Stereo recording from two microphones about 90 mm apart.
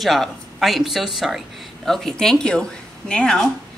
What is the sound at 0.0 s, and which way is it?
Speech, centre (ahead or behind).